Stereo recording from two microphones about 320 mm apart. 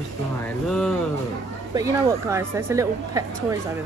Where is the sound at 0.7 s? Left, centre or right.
Centre.